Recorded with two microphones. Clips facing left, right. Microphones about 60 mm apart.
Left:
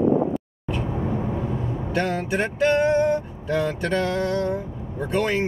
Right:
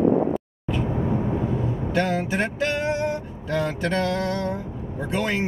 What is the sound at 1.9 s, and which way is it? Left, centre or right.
Vehicle, centre.